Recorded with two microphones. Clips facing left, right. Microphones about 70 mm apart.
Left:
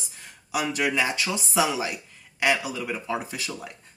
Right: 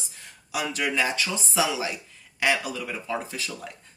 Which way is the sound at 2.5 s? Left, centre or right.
Centre.